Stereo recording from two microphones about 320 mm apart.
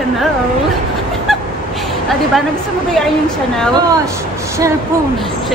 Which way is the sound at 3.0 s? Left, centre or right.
Centre.